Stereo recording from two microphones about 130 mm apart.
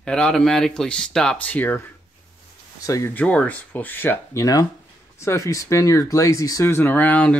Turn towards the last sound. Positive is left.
turn(degrees=10)  # may be behind; listen again after turning